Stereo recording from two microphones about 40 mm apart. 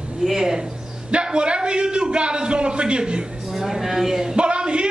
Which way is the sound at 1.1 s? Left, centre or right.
Right.